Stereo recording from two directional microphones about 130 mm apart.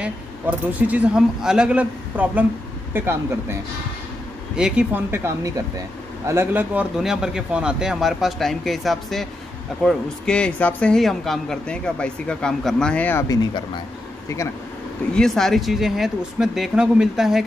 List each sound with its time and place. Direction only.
0.0 s speech: 10° right (ahead or behind)
4.6 s speech: 5° right (ahead or behind); by 13.2 s 10° left (ahead or behind)
15.1 s speech: 5° left (ahead or behind)